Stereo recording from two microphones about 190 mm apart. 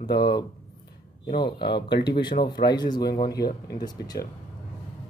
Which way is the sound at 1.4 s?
25° left (ahead or behind).